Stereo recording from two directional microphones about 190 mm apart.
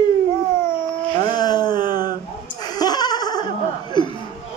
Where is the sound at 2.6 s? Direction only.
20° left (ahead or behind).